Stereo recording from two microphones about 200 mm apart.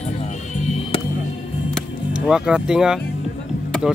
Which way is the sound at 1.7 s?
5° right (ahead or behind).